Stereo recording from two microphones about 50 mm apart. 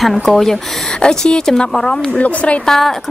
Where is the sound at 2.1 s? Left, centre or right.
Left.